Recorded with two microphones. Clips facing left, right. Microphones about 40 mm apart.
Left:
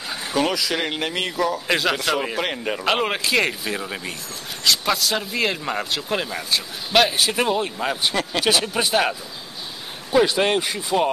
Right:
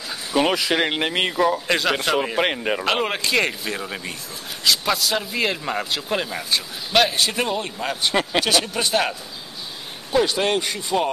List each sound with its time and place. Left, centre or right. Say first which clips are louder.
0.4 s speech: right 3 dB; right
1.7 s a man's voice: even; centre
2.3 s speech: right 3 dB; centre
2.8 s a man's voice: left 4 dB; centre
8.1 s speech: right 3 dB; right
8.5 s a man's voice: left 1 dB; centre
10.1 s a man's voice: left 2 dB; centre